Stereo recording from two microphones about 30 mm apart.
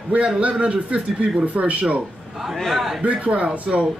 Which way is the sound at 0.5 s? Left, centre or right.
Right.